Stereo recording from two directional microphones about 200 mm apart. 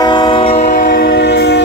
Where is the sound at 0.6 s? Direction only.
60° left (ahead or behind).